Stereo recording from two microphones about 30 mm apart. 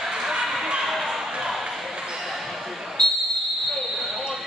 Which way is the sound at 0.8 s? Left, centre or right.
Centre.